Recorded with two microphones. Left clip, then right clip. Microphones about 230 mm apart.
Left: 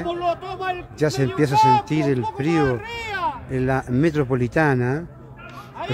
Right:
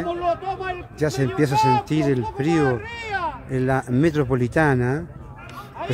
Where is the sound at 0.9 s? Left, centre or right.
Centre.